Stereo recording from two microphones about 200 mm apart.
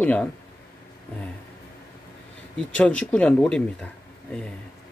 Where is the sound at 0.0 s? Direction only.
5° left (ahead or behind).